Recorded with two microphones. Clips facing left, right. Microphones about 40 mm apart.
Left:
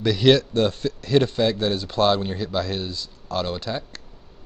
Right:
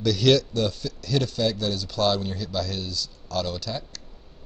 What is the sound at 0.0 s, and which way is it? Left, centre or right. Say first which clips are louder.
Speech: left 3 dB; left.